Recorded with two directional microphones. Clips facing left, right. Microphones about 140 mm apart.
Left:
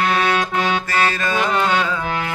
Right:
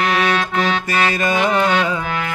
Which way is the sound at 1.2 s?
15° right (ahead or behind).